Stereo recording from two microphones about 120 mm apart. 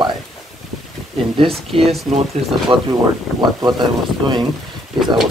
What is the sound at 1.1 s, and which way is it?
Speech, 45° right (ahead or behind).